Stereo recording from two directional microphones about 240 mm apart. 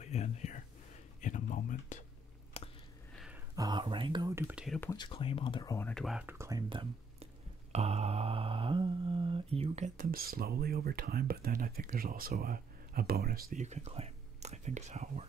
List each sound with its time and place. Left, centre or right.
0.0 s a sound: left
1.2 s speech: left
2.6 s a sound: left
3.2 s speech: centre
4.7 s speech: centre; by 7.2 s right
7.7 s mantra: right